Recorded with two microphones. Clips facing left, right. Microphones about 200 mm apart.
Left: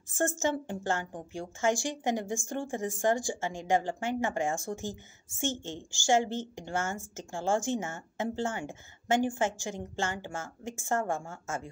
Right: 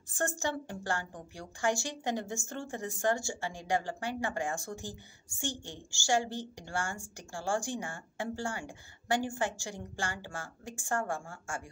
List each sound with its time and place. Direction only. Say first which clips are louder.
0.4 s a woman's voice: left 5 dB; 20° left (ahead or behind)
5.9 s speech: left 4 dB; 20° left (ahead or behind)